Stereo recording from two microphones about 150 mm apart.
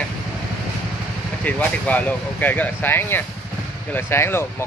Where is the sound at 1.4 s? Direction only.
10° left (ahead or behind).